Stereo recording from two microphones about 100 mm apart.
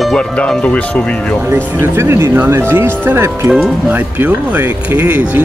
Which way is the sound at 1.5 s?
25° right (ahead or behind).